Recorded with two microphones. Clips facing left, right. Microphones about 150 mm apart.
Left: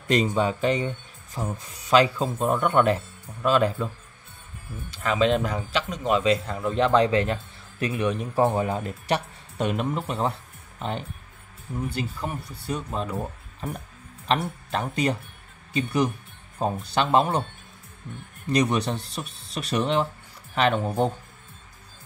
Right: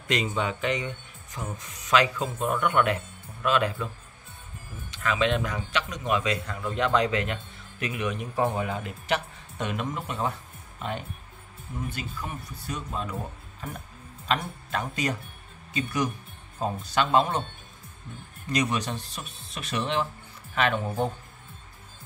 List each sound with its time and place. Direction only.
0.1 s speech: 35° left (ahead or behind)
4.9 s speech: 35° left (ahead or behind)
12.2 s speech: 30° left (ahead or behind)
14.2 s speech: 30° left (ahead or behind)
18.5 s speech: 35° left (ahead or behind)